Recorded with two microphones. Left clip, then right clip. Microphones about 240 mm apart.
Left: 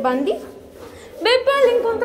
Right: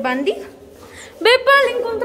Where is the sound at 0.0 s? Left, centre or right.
Centre.